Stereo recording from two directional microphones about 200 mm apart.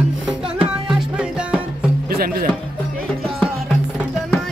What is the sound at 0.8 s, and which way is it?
Music, 5° right (ahead or behind).